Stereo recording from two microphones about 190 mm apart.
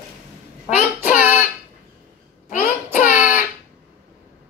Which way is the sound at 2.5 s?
45° left (ahead or behind).